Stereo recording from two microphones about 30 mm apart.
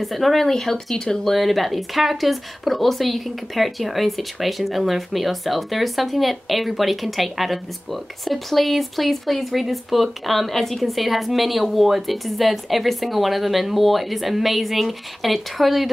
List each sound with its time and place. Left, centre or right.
0.0 s speech: centre
0.9 s speech: left
1.3 s speech: centre